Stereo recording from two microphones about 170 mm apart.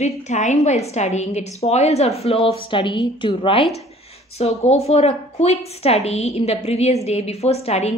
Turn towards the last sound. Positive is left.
turn(degrees=40)  # may be behind; listen again after turning